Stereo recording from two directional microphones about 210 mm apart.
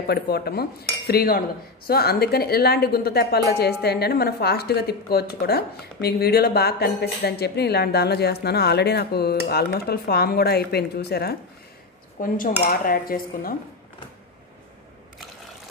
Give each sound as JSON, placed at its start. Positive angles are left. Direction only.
{"t": 0.0, "sound": "a woman's voice", "side_deg": 50}